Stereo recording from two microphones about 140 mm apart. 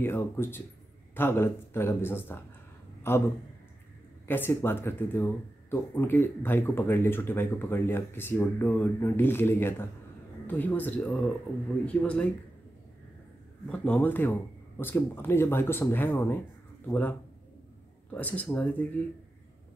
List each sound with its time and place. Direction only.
0.0 s speech: 15° left (ahead or behind)
3.0 s a sound: 15° left (ahead or behind)
4.3 s speech: 15° left (ahead or behind)
8.6 s speech: centre (ahead or behind)
9.0 s speech: 15° left (ahead or behind)
13.9 s speech: 15° left (ahead or behind)
18.1 s speech: 10° left (ahead or behind)